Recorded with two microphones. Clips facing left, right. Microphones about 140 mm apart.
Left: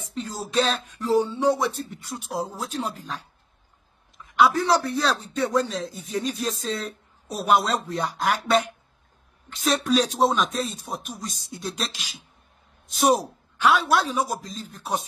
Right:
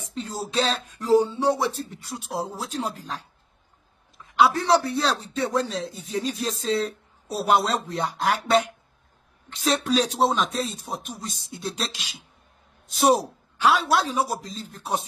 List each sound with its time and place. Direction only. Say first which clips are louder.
0.1 s a sound: left 1 dB; 30° right (ahead or behind)
1.0 s speech: right 2 dB; 10° right (ahead or behind)
1.4 s a man's voice: left 1 dB; 35° right (ahead or behind)
4.2 s a man's voice: even; 30° right (ahead or behind)
12.9 s a man's voice: right 1 dB; 35° right (ahead or behind)